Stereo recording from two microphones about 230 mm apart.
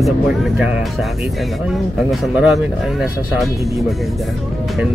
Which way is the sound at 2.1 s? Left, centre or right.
Centre.